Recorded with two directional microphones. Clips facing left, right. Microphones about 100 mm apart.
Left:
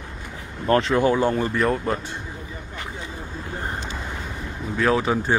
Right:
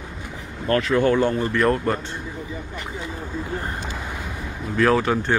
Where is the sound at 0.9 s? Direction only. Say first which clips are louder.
Right 1 dB; 15° left (ahead or behind).